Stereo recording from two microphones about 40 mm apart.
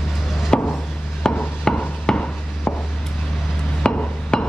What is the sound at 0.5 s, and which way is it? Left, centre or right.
Chop, centre.